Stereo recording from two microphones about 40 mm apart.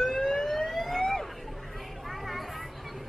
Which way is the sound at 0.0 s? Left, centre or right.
Centre.